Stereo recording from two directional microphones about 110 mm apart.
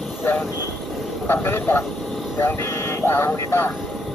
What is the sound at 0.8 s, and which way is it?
Vehicle, centre (ahead or behind).